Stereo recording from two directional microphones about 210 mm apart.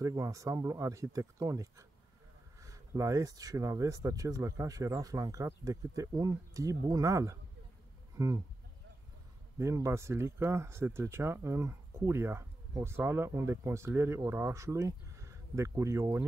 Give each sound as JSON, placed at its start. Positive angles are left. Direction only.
{"t": 0.0, "sound": "speech", "side_deg": -15}
{"t": 9.6, "sound": "speech", "side_deg": -15}